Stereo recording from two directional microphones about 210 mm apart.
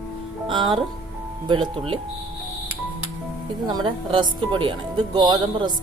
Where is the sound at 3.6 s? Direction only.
20° right (ahead or behind).